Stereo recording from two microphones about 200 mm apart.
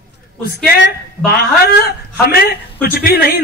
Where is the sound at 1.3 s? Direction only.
50° left (ahead or behind).